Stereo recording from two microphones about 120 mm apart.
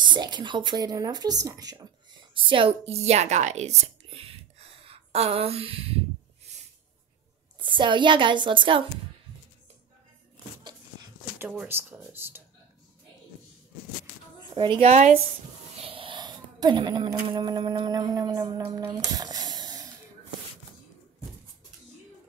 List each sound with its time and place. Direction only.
0.0 s speech: 40° right (ahead or behind)
2.3 s speech: 45° right (ahead or behind)
6.5 s snort: 65° right (ahead or behind)
7.6 s speech: 40° right (ahead or behind)
11.7 s speech: 20° right (ahead or behind)
14.5 s a woman's voice: 45° right (ahead or behind)
14.9 s speech: 80° right
15.8 s a sound: 50° right (ahead or behind)
17.3 s speech: 40° right (ahead or behind)